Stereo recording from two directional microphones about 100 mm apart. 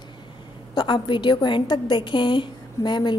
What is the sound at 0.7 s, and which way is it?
A woman's voice, 50° left (ahead or behind).